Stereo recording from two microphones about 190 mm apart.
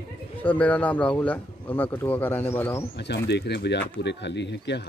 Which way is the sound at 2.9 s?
65° left (ahead or behind).